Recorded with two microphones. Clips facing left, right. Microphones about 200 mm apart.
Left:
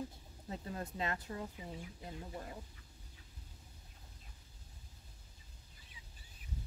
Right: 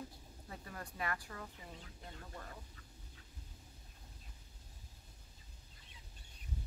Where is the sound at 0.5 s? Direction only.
25° left (ahead or behind).